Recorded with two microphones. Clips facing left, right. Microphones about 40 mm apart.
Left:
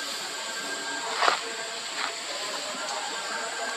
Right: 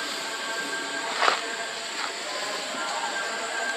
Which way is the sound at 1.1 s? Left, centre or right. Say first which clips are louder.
Right 1 dB; centre.